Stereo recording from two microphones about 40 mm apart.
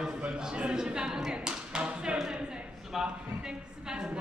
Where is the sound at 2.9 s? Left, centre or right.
Centre.